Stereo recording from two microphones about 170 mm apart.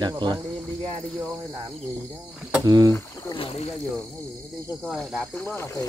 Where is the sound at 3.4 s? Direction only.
35° left (ahead or behind).